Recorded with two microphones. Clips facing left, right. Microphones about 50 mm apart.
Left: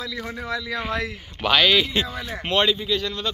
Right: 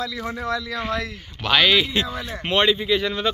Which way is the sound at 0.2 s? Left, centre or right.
Centre.